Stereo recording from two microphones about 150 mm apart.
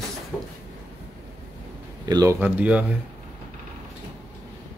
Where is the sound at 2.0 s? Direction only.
25° right (ahead or behind).